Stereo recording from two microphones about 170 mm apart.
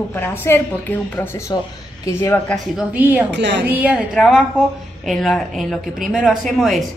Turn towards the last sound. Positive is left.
turn(degrees=0)  # may be behind; listen again after turning